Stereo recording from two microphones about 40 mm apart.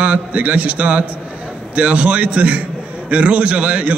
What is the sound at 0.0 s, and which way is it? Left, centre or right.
A man's voice, right.